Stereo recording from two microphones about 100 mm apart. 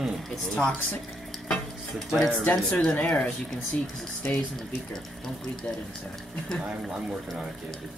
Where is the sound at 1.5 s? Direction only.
5° left (ahead or behind).